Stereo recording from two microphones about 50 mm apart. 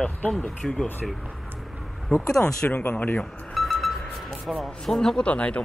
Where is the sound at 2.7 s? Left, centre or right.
Left.